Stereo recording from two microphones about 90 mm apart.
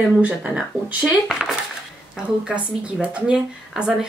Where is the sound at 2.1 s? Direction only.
10° right (ahead or behind).